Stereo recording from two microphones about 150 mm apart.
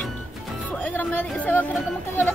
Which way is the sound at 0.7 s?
10° left (ahead or behind).